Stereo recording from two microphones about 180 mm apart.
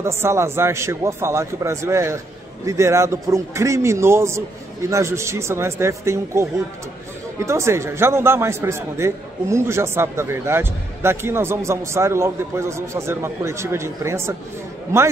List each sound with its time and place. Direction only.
0.0 s a man's voice: 15° right (ahead or behind)